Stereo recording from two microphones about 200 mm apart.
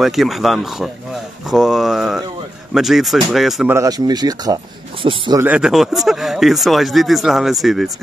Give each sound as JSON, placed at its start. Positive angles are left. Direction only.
{"t": 0.0, "sound": "speech", "side_deg": 0}
{"t": 3.7, "sound": "speech", "side_deg": -15}
{"t": 5.4, "sound": "speech", "side_deg": -5}